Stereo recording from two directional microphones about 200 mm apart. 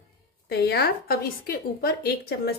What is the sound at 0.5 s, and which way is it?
A woman's voice, 55° left (ahead or behind).